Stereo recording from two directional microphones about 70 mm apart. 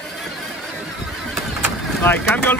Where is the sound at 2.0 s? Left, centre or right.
Left.